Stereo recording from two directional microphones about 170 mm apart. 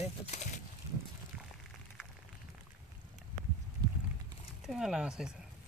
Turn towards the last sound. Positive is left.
turn(degrees=-5)  # may be behind; listen again after turning